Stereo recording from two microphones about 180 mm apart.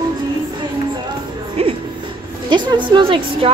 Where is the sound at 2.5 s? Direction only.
25° right (ahead or behind).